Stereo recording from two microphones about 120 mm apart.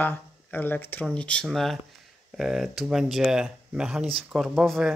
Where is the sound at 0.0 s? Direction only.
15° left (ahead or behind).